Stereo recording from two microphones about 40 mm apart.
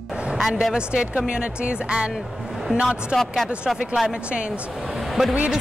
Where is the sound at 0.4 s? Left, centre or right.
Centre.